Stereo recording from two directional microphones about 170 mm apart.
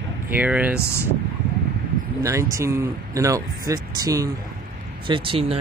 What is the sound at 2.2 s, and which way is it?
Speech, 20° right (ahead or behind).